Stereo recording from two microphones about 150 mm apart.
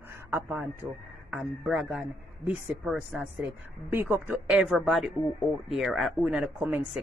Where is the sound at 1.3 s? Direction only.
Centre (ahead or behind).